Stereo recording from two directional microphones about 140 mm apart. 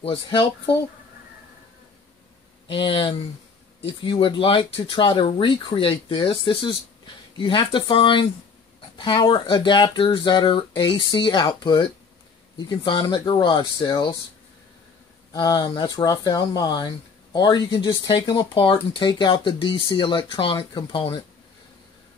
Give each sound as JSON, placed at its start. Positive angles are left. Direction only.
{"t": 0.0, "sound": "speech", "side_deg": 40}
{"t": 2.7, "sound": "speech", "side_deg": 40}
{"t": 15.3, "sound": "speech", "side_deg": 35}